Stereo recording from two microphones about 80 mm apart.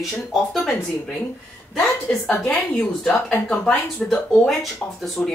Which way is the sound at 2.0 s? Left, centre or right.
Centre.